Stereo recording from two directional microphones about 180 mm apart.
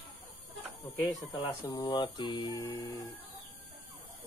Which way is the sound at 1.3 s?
20° left (ahead or behind).